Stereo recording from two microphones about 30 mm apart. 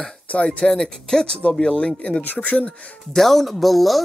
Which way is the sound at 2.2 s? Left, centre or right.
Left.